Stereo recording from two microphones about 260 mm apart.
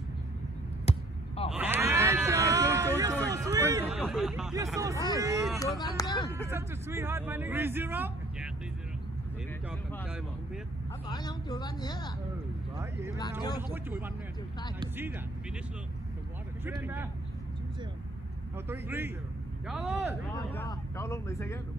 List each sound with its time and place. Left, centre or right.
0.8 s basketball bounce: left
1.5 s a sound: centre
4.0 s speech: centre
5.8 s speech: centre
6.5 s speech: centre
10.0 s speech: centre
11.1 s speech: centre
12.7 s speech: centre
14.8 s speech: centre
16.6 s speech: centre
18.7 s speech: centre
20.3 s speech: centre